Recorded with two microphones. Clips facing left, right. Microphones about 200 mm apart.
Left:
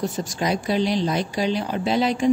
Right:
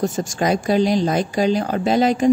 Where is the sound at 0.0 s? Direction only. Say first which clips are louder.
Right 4 dB; 50° right (ahead or behind).